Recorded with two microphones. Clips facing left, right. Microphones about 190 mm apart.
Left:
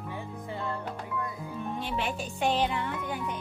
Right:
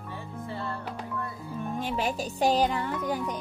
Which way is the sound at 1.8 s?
40° right (ahead or behind).